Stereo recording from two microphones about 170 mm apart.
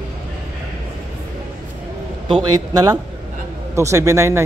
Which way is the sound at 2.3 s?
25° right (ahead or behind).